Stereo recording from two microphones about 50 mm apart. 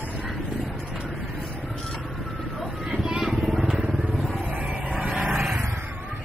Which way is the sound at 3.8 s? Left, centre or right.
Right.